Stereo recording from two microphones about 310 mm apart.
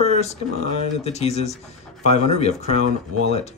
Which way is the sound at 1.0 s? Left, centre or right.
Centre.